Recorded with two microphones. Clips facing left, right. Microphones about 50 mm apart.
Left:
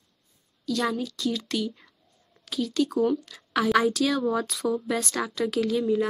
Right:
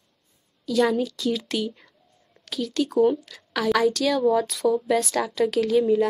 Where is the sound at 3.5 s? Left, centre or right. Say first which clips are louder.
Right 1 dB; centre.